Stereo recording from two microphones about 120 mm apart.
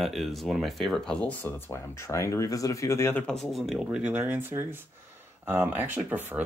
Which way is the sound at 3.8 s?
10° right (ahead or behind).